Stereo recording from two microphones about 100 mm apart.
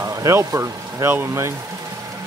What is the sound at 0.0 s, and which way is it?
Speech, 30° right (ahead or behind).